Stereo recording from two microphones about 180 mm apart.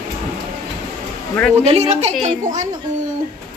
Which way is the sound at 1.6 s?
35° right (ahead or behind).